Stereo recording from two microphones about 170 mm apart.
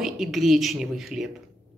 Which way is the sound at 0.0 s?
Centre (ahead or behind).